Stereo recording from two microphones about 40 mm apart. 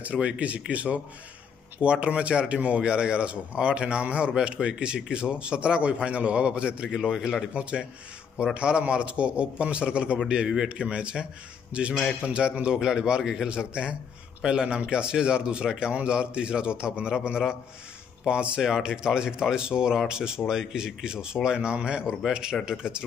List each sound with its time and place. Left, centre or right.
0.0 s speech: right
6.9 s a man's voice: centre
8.5 s speech: right
10.7 s a man's voice: right; by 13.5 s centre
13.5 s speech: right
18.6 s speech: centre